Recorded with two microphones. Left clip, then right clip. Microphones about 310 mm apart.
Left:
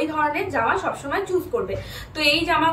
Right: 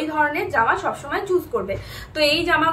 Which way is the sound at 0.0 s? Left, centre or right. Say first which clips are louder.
Right 1 dB; centre.